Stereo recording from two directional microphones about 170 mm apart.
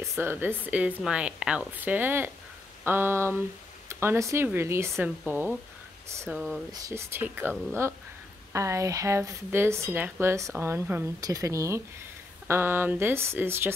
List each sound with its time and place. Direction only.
0.2 s speech: 10° right (ahead or behind)
6.7 s speech: 15° right (ahead or behind)